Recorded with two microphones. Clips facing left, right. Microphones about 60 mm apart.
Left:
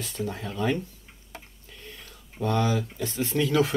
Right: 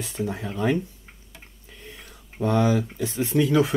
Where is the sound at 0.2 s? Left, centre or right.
Centre.